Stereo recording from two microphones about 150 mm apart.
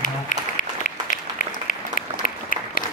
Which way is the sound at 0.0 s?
60° left (ahead or behind).